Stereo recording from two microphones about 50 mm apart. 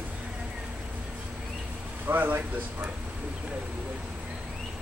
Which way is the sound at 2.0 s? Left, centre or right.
Right.